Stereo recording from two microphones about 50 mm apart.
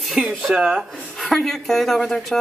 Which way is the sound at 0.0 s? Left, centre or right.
Centre.